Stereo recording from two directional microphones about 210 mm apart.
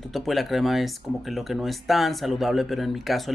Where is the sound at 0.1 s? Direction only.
Centre (ahead or behind).